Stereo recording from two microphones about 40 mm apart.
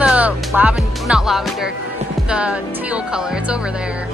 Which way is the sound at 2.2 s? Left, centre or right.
Right.